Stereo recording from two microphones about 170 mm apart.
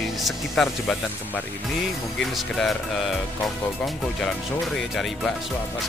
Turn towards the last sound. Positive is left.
turn(degrees=0)  # may be behind; listen again after turning